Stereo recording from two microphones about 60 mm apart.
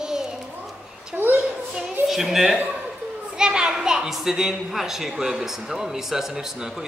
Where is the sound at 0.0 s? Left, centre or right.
Centre.